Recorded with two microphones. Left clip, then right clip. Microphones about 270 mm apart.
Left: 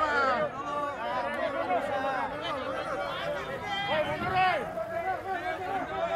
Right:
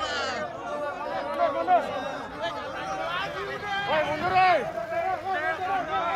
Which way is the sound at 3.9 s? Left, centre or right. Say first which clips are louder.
Right 5 dB; right.